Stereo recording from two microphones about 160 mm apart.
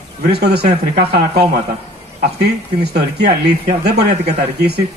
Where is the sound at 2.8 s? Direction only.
90° right.